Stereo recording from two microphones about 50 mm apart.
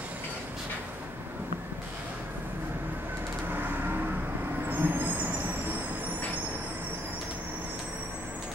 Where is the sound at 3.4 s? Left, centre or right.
Right.